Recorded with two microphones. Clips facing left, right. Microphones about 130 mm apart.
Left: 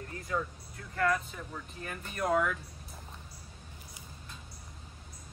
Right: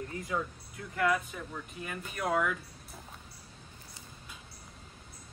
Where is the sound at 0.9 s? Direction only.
10° right (ahead or behind).